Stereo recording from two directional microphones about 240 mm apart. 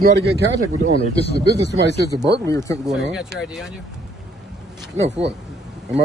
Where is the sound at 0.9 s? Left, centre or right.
Left.